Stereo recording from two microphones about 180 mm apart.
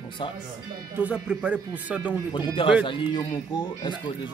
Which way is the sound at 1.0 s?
5° right (ahead or behind).